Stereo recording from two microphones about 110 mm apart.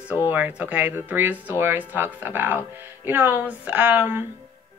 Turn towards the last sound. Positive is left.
turn(degrees=-20)  # may be behind; listen again after turning